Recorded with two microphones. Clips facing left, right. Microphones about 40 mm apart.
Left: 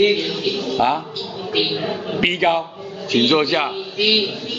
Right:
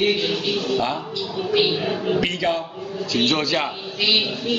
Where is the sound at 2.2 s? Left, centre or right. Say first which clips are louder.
Left 5 dB; left.